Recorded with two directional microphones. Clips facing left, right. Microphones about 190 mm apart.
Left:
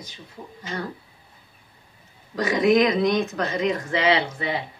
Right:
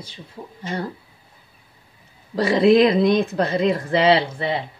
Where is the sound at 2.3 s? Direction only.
30° right (ahead or behind).